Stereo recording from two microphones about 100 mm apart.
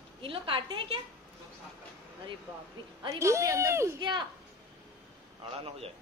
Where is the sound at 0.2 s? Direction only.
60° right (ahead or behind).